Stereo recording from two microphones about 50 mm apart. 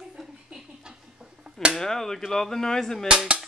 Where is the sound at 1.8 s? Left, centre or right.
Centre.